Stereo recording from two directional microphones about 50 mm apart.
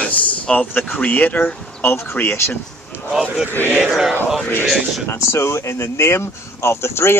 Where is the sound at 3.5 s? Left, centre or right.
Left.